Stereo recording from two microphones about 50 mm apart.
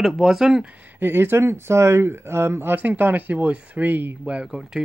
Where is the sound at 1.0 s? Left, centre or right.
Right.